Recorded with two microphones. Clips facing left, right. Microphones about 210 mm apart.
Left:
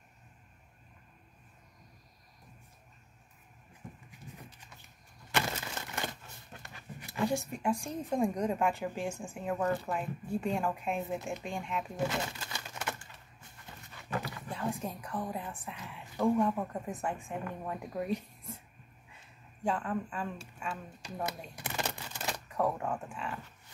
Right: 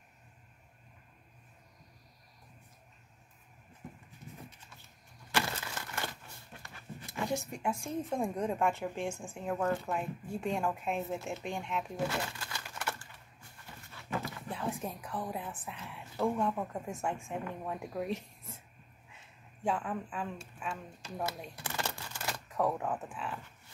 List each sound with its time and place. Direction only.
4.6 s a sound: 15° left (ahead or behind)
7.2 s a woman's voice: centre (ahead or behind)
12.1 s pigeon: 20° left (ahead or behind)
14.5 s a woman's voice: 5° right (ahead or behind)
19.6 s a woman's voice: 5° right (ahead or behind)
21.0 s speech: 15° left (ahead or behind)
21.6 s a sound: 20° left (ahead or behind)
22.5 s a woman's voice: 5° right (ahead or behind)